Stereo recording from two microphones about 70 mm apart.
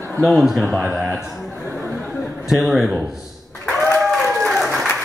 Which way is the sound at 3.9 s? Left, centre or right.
Centre.